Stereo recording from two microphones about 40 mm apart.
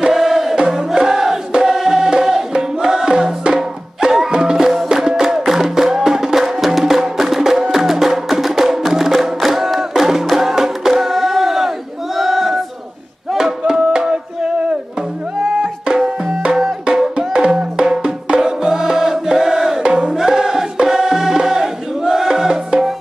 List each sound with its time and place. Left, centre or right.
0.1 s chant: centre
1.6 s music: centre
12.2 s a sound: centre
13.3 s music: centre
15.6 s music: centre